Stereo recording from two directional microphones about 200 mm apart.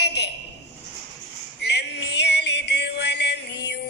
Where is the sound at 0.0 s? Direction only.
55° left (ahead or behind).